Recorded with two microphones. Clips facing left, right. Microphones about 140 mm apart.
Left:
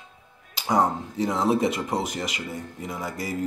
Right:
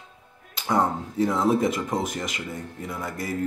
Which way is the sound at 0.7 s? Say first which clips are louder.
Left 1 dB; centre (ahead or behind).